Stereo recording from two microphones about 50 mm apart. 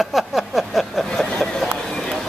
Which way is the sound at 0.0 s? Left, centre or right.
Centre.